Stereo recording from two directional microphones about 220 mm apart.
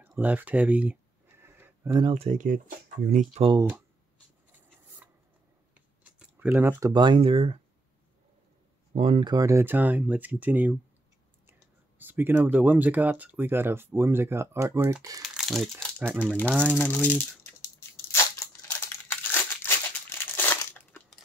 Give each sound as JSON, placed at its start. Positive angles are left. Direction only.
{"t": 0.0, "sound": "speech", "side_deg": -10}
{"t": 1.4, "sound": "a sound", "side_deg": -10}
{"t": 2.0, "sound": "speech", "side_deg": -30}
{"t": 5.8, "sound": "speech", "side_deg": -5}
{"t": 8.9, "sound": "speech", "side_deg": -25}
{"t": 12.0, "sound": "speech", "side_deg": -10}
{"t": 15.3, "sound": "crumpling", "side_deg": 0}
{"t": 16.1, "sound": "speech", "side_deg": 0}
{"t": 17.9, "sound": "crushing", "side_deg": 10}
{"t": 18.7, "sound": "crumpling", "side_deg": 10}